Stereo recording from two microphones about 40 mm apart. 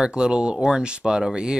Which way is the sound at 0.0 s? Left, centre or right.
Right.